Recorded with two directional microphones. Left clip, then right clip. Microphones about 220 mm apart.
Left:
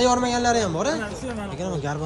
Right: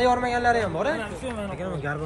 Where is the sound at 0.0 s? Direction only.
5° left (ahead or behind).